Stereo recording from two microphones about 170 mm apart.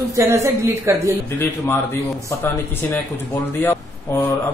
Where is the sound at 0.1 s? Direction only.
20° right (ahead or behind).